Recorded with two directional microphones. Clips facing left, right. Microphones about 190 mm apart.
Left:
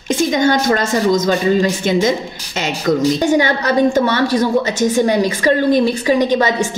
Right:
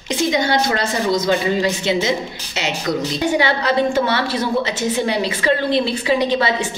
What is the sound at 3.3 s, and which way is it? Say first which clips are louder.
A woman's voice: left 3 dB; 40° left (ahead or behind).